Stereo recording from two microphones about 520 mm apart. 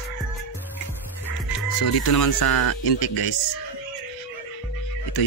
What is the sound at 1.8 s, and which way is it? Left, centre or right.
Speech, left.